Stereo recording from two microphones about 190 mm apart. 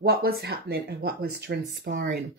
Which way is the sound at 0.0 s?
55° right (ahead or behind).